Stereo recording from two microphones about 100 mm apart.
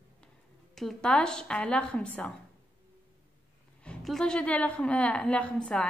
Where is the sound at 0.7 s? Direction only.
5° left (ahead or behind).